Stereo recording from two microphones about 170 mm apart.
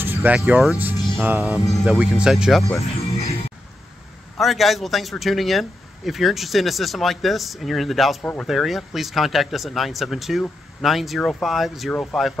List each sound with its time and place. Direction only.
0.0 s speech: 10° right (ahead or behind)
3.0 s music: 35° left (ahead or behind)
4.4 s speech: centre (ahead or behind)
8.2 s speech: 10° left (ahead or behind)
8.5 s speech: centre (ahead or behind)